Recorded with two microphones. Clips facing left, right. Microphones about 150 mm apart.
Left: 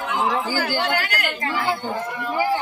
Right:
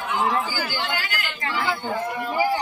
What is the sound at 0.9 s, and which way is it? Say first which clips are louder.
Speech: left 5 dB; 70° left (ahead or behind).